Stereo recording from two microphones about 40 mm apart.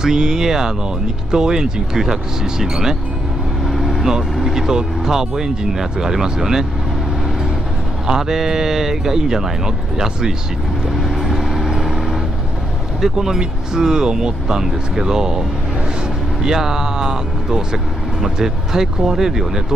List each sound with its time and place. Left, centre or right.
0.0 s speech: centre
8.1 s speech: centre
10.9 s vehicle: centre
13.0 s speech: centre
16.4 s speech: centre